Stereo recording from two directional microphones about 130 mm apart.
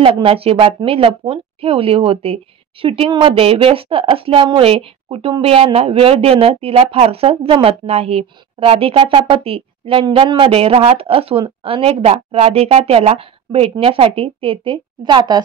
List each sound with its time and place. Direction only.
0.0 s a woman's voice: 45° right (ahead or behind)